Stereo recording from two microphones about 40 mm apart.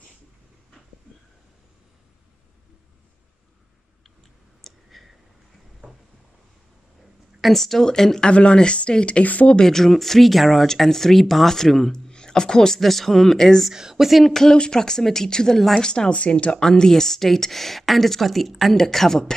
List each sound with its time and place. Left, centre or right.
4.6 s clicking: centre
7.4 s speech: centre
8.3 s speech: left
9.2 s speech: left
9.6 s speech: centre
13.7 s speech: centre
14.2 s speech: centre
16.1 s speech: left
16.6 s a woman's voice: centre
18.8 s speech: centre